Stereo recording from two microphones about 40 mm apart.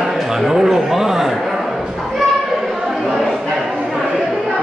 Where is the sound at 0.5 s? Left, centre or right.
Centre.